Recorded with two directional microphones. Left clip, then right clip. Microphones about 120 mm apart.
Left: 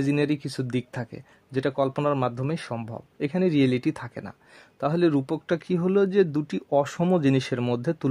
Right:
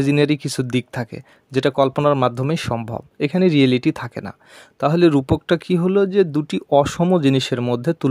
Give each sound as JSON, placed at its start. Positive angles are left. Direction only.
{"t": 0.0, "sound": "speech", "side_deg": -40}
{"t": 6.4, "sound": "speech", "side_deg": -35}